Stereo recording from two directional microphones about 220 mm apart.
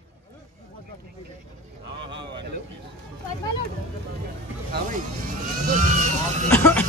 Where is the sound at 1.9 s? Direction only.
50° right (ahead or behind).